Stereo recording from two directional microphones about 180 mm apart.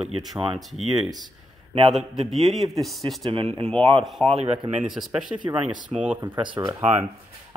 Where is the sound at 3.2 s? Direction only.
30° right (ahead or behind).